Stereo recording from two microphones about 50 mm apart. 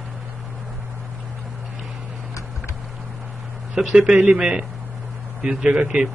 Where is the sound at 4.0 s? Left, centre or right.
Right.